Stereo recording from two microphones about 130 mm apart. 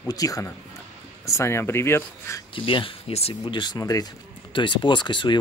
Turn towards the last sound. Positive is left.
turn(degrees=35)  # may be behind; listen again after turning